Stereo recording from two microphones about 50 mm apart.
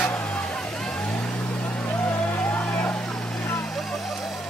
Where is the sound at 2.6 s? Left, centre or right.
Left.